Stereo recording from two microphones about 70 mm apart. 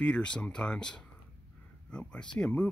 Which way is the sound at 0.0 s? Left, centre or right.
Centre.